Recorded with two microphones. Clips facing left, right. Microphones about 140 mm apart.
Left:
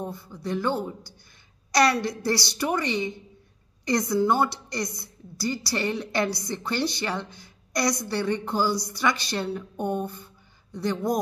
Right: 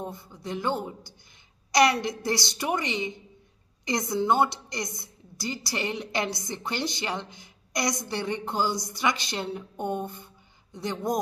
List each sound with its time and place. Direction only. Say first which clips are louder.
0.0 s a woman's voice: left 3 dB; 20° right (ahead or behind)